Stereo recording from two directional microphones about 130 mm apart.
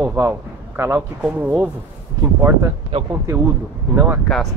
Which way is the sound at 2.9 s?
45° right (ahead or behind).